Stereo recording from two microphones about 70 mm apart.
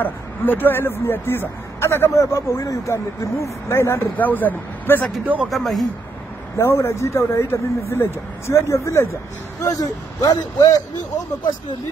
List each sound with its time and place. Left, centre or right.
0.0 s speech: left
4.2 s speech: left
5.5 s speech: centre
6.5 s speech: left
9.7 s speech: left